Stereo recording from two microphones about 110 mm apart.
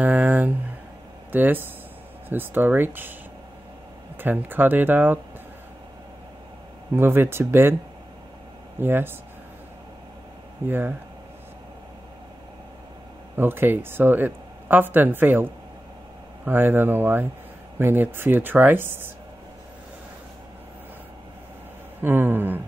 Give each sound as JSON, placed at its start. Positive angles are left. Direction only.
{"t": 0.0, "sound": "a sound", "side_deg": -15}
{"t": 1.3, "sound": "speech", "side_deg": -15}
{"t": 4.2, "sound": "speech", "side_deg": -15}
{"t": 7.0, "sound": "speech", "side_deg": -20}
{"t": 8.7, "sound": "speech", "side_deg": -20}
{"t": 10.7, "sound": "speech", "side_deg": -20}
{"t": 13.4, "sound": "speech", "side_deg": -20}
{"t": 22.0, "sound": "a sound", "side_deg": -20}